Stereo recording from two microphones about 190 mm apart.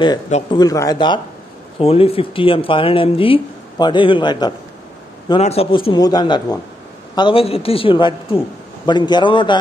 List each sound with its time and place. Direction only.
0.3 s speech: 25° left (ahead or behind)